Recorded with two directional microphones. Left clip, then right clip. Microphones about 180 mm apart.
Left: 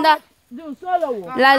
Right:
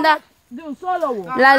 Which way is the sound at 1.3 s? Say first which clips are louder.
Right 2 dB; 10° left (ahead or behind).